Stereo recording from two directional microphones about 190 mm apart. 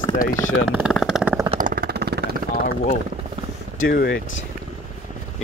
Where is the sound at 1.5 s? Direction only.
45° right (ahead or behind).